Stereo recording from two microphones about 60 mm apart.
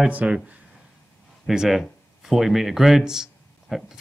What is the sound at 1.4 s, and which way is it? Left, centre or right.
Speech, centre.